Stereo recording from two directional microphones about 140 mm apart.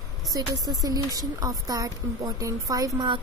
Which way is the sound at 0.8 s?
25° right (ahead or behind).